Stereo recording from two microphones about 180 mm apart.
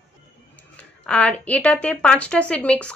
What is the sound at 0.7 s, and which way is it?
A woman's voice, 5° left (ahead or behind).